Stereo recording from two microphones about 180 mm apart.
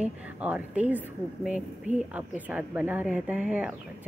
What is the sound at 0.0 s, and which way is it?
Speech, 10° right (ahead or behind).